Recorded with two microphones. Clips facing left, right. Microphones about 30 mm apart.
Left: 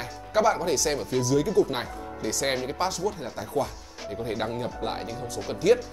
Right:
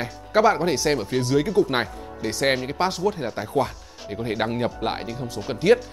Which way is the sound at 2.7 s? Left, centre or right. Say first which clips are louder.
Right 4 dB; right.